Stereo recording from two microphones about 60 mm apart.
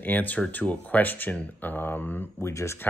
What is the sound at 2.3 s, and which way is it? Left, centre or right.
Speech, left.